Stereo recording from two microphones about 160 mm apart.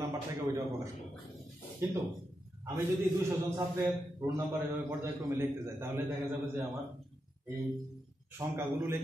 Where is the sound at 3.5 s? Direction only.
15° right (ahead or behind).